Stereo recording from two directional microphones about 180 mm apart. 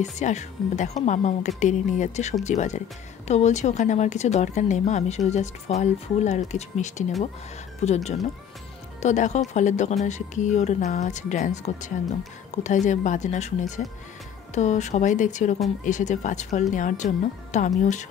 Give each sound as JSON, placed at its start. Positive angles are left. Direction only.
{"t": 0.0, "sound": "speech", "side_deg": 40}